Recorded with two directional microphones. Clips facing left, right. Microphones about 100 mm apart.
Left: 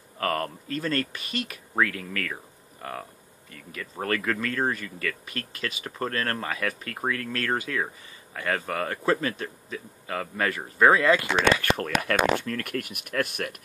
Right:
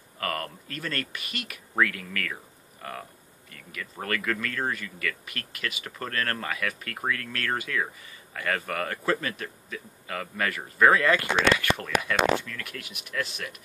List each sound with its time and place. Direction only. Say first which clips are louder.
0.2 s speech: left 4 dB; 30° left (ahead or behind)
11.3 s speech: left 1 dB; 40° left (ahead or behind)